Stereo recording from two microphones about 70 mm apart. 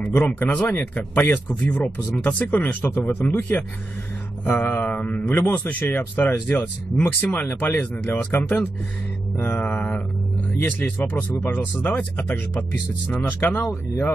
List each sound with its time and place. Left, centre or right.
0.2 s speech: left
9.4 s mantra: left
9.7 s speech: left